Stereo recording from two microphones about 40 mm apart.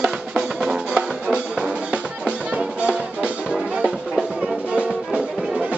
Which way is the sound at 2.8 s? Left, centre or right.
Right.